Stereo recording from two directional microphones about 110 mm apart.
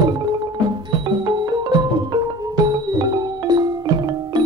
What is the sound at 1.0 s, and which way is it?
Music, 45° right (ahead or behind).